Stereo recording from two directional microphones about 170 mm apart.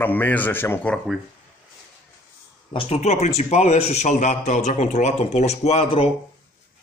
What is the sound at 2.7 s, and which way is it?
A man's voice, 35° left (ahead or behind).